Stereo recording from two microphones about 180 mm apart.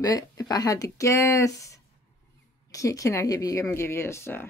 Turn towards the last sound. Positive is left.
turn(degrees=15)  # may be behind; listen again after turning